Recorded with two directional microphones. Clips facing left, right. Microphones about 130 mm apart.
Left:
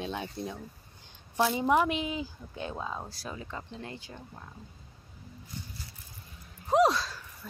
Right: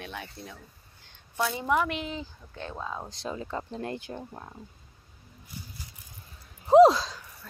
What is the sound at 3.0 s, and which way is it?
Speech, 25° right (ahead or behind).